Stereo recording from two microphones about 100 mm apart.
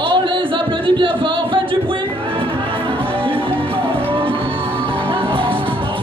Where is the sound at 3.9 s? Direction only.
65° right (ahead or behind).